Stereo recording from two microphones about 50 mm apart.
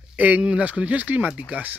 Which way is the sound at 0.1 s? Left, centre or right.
Right.